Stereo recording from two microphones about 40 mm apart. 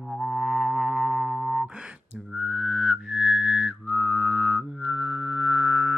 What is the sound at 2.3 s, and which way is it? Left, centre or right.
Music, centre.